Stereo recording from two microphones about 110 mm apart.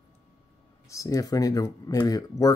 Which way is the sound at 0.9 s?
30° left (ahead or behind).